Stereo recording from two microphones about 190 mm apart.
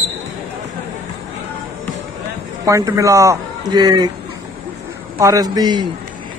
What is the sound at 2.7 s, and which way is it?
Speech, 15° right (ahead or behind).